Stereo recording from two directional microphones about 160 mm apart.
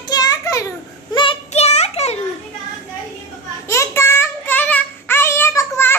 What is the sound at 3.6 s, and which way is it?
Child singing, 15° left (ahead or behind).